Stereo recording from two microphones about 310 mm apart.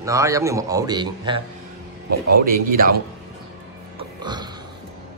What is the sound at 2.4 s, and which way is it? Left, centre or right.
Speech, right.